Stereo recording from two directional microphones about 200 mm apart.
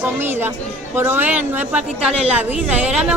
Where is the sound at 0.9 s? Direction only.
10° right (ahead or behind).